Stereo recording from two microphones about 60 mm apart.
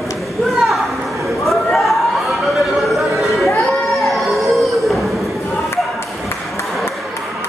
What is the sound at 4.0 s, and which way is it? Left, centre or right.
Music, centre.